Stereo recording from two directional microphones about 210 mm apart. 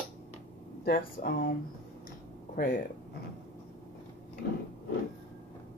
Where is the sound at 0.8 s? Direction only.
45° left (ahead or behind).